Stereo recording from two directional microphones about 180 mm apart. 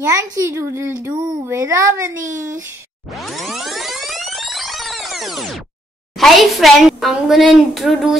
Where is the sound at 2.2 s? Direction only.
45° right (ahead or behind).